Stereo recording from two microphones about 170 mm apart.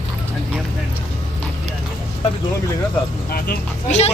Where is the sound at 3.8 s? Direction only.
40° left (ahead or behind).